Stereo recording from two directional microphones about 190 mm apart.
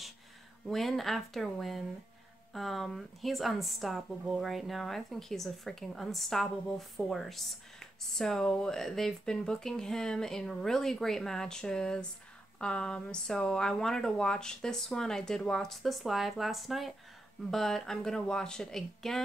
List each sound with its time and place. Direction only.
0.7 s speech: centre (ahead or behind)